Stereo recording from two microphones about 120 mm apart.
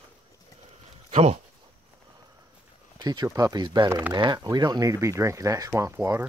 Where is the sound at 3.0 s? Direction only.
35° right (ahead or behind).